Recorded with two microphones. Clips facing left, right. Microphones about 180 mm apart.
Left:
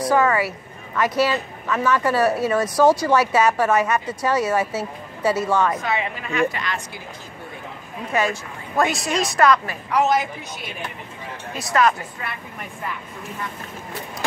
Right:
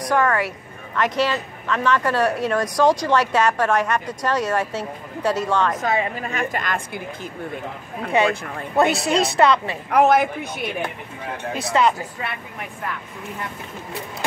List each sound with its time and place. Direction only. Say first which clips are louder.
0.0 s speech: left 1 dB; 5° left (ahead or behind)
5.8 s a woman's voice: right 3 dB; 45° right (ahead or behind)
8.8 s a man's voice: right 4 dB; 60° right (ahead or behind)
9.4 s a woman's voice: left 2 dB; 25° right (ahead or behind)
9.8 s a man's voice: right 4 dB; 55° right (ahead or behind)
11.7 s a woman's voice: even; 20° right (ahead or behind)